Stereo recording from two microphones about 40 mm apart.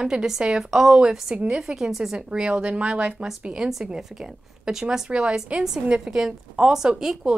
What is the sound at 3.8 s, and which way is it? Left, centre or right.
A woman's voice, centre.